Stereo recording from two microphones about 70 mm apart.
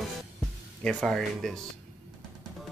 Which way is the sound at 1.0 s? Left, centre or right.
Centre.